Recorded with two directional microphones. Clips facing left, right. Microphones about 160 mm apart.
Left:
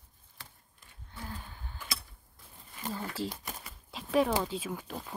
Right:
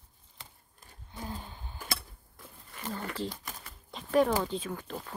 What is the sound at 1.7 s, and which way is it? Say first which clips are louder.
Tick-tock: right 4 dB; 55° right (ahead or behind).